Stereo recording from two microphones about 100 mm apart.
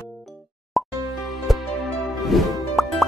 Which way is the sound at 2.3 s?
Centre (ahead or behind).